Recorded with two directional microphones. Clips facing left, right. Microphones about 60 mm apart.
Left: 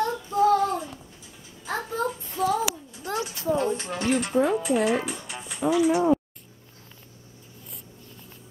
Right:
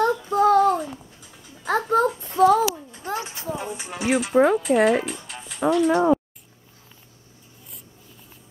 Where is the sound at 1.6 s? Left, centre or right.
Right.